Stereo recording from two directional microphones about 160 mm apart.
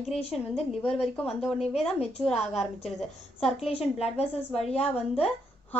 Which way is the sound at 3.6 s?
40° left (ahead or behind).